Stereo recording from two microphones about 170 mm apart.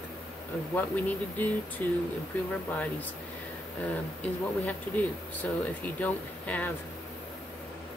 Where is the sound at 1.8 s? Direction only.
10° left (ahead or behind).